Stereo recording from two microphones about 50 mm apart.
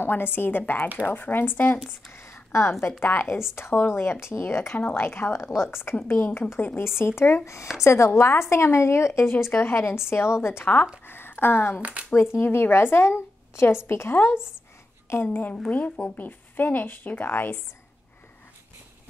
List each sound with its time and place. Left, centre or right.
0.0 s a woman's voice: left
2.1 s a sound: left
3.0 s speech: left
3.5 s a woman's voice: left
5.4 s a woman's voice: left
7.8 s speech: left
9.5 s speech: left
10.6 s speech: left
11.1 s a sound: left
11.8 s speech: right
12.1 s speech: left
15.0 s a woman's voice: left
15.7 s speech: left